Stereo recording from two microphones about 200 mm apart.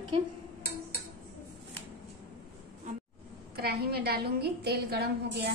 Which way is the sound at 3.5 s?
50° right (ahead or behind).